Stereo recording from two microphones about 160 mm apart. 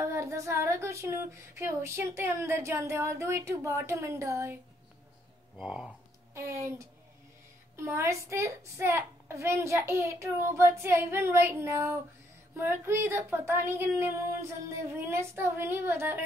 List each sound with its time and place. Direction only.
0.0 s speech: 20° right (ahead or behind)
5.6 s speech: 5° right (ahead or behind)
6.3 s speech: 15° right (ahead or behind)
7.7 s speech: 15° right (ahead or behind)